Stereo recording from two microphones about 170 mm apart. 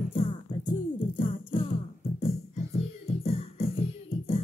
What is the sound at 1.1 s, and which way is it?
Music, 30° left (ahead or behind).